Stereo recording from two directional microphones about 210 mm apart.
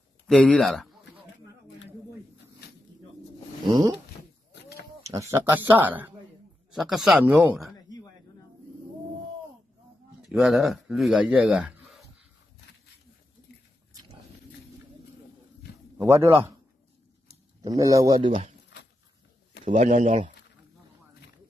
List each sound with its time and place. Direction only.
0.3 s a sound: 5° left (ahead or behind)
4.5 s a sound: 50° left (ahead or behind)
5.0 s a man's voice: 15° right (ahead or behind)
10.3 s speech: centre (ahead or behind)
16.1 s speech: 10° right (ahead or behind)
17.6 s speech: 15° right (ahead or behind)
19.6 s speech: 35° right (ahead or behind)